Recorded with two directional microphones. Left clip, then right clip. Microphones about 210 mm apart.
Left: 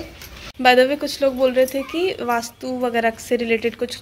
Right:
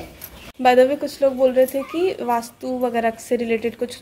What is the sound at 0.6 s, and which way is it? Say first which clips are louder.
Speech: even; centre (ahead or behind).